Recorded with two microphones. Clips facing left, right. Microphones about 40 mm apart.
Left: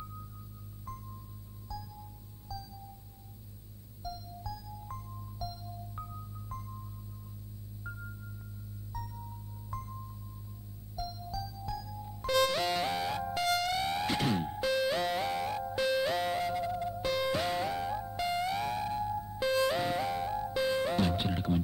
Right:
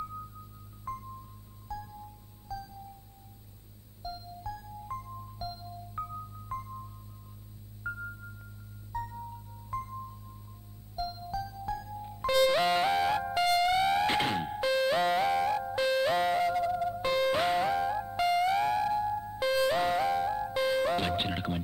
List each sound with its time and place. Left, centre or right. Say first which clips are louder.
0.9 s music: right 7 dB; right
1.7 s chime: right 4 dB; right
2.4 s music: right 4 dB; right
4.0 s music: right 2 dB; right
7.8 s music: right 8 dB; right
9.7 s music: right 6 dB; right
11.0 s music: right 4 dB; right
12.3 s music: right 4 dB; centre
14.0 s music: right 3 dB; right
14.6 s music: right 4 dB; centre
18.2 s music: right 7 dB; centre
18.7 s music: right 5 dB; right
19.4 s music: right 2 dB; centre
21.2 s music: even; right